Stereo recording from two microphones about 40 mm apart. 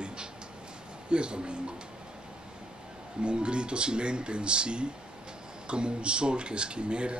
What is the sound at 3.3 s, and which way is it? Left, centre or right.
A man's voice, right.